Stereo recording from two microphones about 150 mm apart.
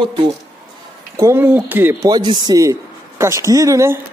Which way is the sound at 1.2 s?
20° right (ahead or behind).